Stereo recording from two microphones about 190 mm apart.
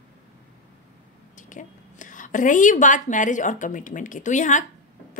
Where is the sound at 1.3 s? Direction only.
40° left (ahead or behind).